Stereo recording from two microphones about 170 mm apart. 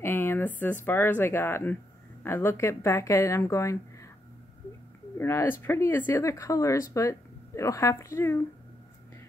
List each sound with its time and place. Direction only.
0.0 s a sound: 15° left (ahead or behind)
0.8 s speech: 10° left (ahead or behind)
5.1 s speech: 15° left (ahead or behind)